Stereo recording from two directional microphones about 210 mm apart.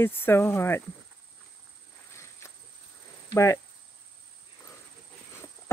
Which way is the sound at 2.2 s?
15° left (ahead or behind).